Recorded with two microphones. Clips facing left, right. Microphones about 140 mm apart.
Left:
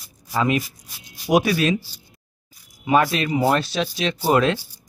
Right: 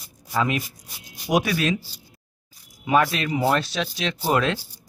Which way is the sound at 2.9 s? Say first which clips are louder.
Left 2 dB; 5° left (ahead or behind).